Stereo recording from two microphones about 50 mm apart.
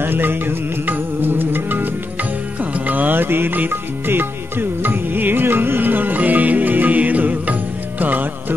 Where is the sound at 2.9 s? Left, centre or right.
Right.